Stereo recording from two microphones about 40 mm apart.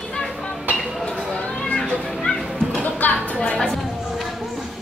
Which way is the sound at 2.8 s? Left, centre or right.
Left.